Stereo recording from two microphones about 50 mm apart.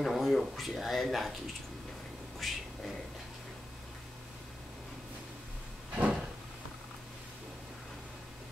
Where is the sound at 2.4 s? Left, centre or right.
Centre.